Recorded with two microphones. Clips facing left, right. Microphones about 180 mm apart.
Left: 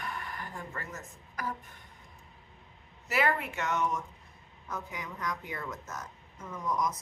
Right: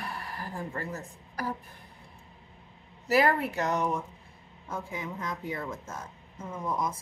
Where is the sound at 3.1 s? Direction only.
35° right (ahead or behind).